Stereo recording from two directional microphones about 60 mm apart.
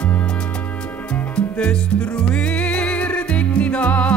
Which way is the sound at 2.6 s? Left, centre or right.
Left.